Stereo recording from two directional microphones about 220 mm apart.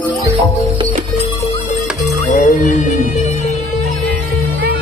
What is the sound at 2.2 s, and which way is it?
Music, 35° left (ahead or behind).